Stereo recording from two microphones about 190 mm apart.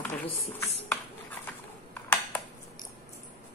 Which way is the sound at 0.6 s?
15° left (ahead or behind).